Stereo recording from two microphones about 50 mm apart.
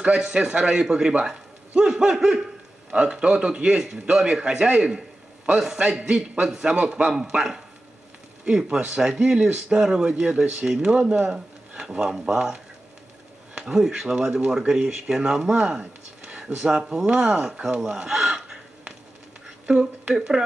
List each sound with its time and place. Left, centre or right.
0.0 s a man's voice: centre
8.6 s speech: centre
10.9 s a man's voice: right
15.8 s a sound: right
16.9 s a man's voice: right
17.6 s gasp: centre
19.7 s speech: centre